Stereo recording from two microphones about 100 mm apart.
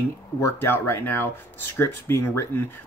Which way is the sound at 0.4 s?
30° left (ahead or behind).